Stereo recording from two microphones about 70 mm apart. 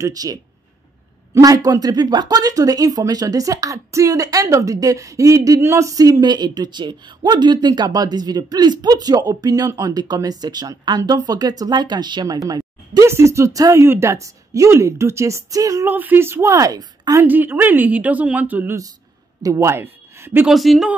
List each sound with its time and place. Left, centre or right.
0.0 s speech: right
1.4 s speech: right
6.2 s speech: right
12.4 s a sound: right
13.0 s speech: right
13.8 s speech: right
15.9 s speech: right
17.2 s a woman's voice: right
19.4 s speech: right
19.7 s speech: right
20.4 s speech: centre